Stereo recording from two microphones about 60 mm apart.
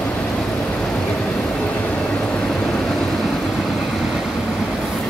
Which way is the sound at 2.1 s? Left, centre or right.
Left.